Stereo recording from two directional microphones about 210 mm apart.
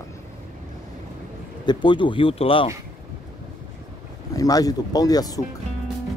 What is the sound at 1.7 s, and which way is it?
Speech, 20° left (ahead or behind).